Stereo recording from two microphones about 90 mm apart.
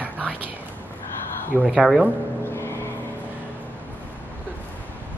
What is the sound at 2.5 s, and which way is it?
Vehicle, 30° left (ahead or behind).